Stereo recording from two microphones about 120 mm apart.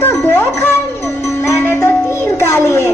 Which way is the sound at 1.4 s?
25° left (ahead or behind).